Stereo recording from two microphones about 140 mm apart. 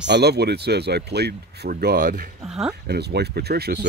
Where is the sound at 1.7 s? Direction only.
80° right.